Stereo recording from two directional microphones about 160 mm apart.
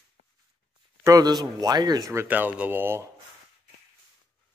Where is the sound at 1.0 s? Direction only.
20° right (ahead or behind).